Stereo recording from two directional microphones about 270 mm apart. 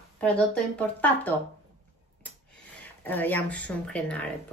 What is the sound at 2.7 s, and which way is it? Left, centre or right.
Speech, centre.